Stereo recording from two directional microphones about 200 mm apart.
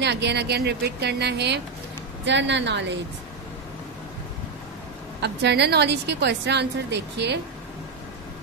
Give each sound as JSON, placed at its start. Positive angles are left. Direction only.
{"t": 0.0, "sound": "a woman's voice", "side_deg": -60}
{"t": 5.2, "sound": "a woman's voice", "side_deg": -60}